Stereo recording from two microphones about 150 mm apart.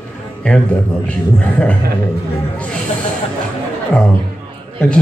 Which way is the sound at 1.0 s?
10° left (ahead or behind).